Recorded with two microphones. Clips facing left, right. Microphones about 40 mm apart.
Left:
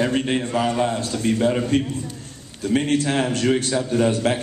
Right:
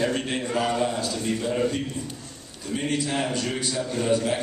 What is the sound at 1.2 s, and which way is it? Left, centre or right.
Speech, left.